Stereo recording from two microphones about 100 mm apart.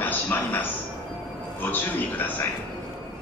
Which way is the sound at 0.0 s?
20° left (ahead or behind).